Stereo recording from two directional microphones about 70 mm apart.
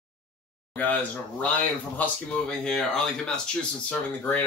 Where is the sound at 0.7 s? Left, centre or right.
Left.